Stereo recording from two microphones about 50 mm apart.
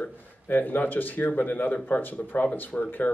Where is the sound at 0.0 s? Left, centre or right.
Left.